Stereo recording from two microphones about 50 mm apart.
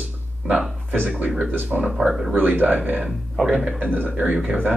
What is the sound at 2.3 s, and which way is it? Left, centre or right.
Speech, right.